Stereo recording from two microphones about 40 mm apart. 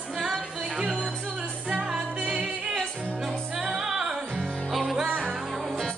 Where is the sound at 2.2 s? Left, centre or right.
Right.